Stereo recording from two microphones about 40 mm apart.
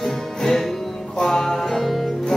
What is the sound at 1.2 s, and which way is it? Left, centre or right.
Music, centre.